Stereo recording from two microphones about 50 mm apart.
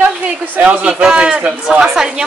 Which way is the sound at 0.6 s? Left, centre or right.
Right.